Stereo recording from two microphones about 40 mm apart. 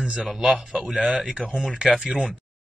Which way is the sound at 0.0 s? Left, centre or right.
Right.